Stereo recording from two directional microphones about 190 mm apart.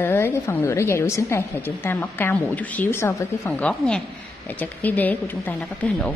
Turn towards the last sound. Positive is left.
turn(degrees=10)  # may be behind; listen again after turning